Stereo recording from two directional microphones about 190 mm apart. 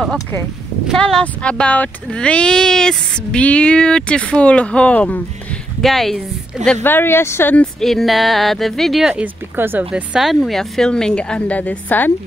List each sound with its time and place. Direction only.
0.8 s speech: 5° left (ahead or behind)